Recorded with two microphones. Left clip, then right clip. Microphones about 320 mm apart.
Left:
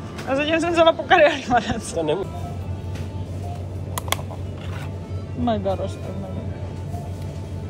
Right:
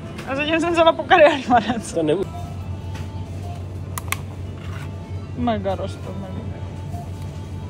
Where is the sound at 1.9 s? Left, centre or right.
Right.